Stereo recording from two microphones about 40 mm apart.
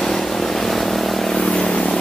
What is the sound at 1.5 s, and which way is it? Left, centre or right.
Vehicle, centre.